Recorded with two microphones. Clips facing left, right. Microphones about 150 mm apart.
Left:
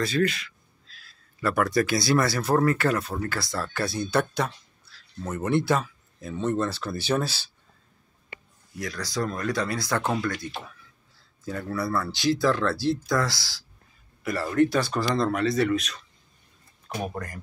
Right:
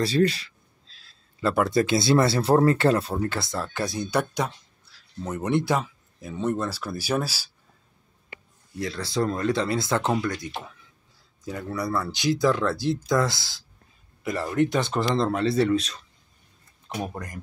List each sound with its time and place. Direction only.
0.0 s speech: 35° right (ahead or behind); by 7.5 s 10° right (ahead or behind)
8.7 s speech: 25° right (ahead or behind)
17.1 s speech: 20° right (ahead or behind)